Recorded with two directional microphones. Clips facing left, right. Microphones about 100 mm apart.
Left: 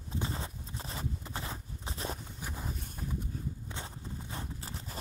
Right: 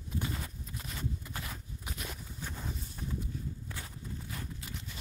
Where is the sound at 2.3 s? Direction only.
15° left (ahead or behind).